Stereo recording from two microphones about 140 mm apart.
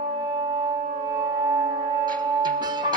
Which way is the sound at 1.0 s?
25° right (ahead or behind).